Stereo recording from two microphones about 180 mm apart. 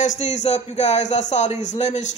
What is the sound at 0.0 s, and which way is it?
Speech, 40° left (ahead or behind).